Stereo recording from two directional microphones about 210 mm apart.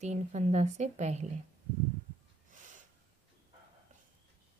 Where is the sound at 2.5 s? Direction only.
35° right (ahead or behind).